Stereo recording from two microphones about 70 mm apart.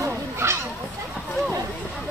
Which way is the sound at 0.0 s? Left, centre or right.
Right.